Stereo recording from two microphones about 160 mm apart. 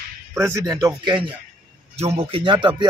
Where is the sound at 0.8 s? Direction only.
5° right (ahead or behind).